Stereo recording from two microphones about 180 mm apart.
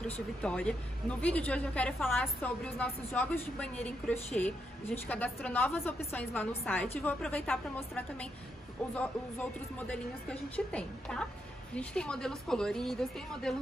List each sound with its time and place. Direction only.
0.0 s a woman's voice: 5° left (ahead or behind)